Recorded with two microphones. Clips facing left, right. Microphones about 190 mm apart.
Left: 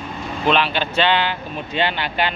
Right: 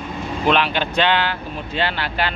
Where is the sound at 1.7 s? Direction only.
20° left (ahead or behind).